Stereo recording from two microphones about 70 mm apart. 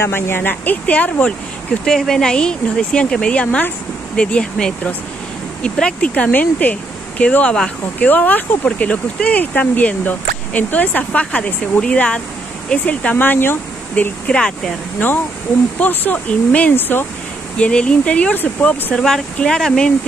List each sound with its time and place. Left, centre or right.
0.0 s speech: left
1.9 s speech: centre
8.1 s speech: left
14.2 s speech: centre
15.8 s speech: left
17.6 s speech: centre
18.9 s speech: centre